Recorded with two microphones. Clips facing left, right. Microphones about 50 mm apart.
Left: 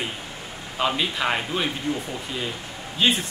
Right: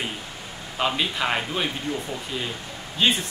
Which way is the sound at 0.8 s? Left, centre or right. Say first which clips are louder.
Left 1 dB; centre.